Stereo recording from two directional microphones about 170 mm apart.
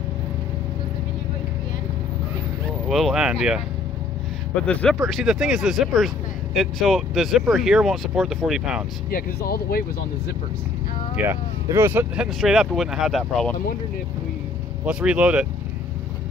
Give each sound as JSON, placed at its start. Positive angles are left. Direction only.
{"t": 2.9, "sound": "speech", "side_deg": 0}
{"t": 5.1, "sound": "speech", "side_deg": -5}
{"t": 9.1, "sound": "speech", "side_deg": 60}
{"t": 11.2, "sound": "speech", "side_deg": -15}
{"t": 12.4, "sound": "speech", "side_deg": 0}
{"t": 14.9, "sound": "speech", "side_deg": -5}